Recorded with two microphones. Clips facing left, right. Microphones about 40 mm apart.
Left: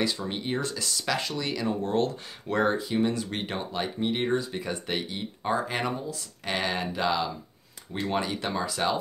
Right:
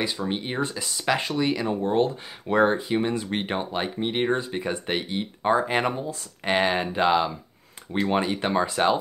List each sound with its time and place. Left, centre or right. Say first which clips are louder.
0.3 s speech: right 3 dB; right